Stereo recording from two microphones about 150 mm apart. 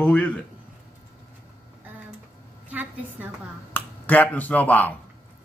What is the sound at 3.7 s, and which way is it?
Speech, 10° left (ahead or behind).